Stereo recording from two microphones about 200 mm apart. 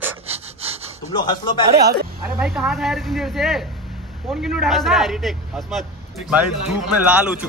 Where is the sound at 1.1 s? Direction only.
20° left (ahead or behind).